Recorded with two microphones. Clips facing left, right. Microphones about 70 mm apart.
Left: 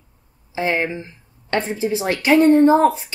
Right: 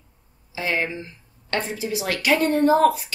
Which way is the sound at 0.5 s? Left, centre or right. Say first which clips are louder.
Left 4 dB; left.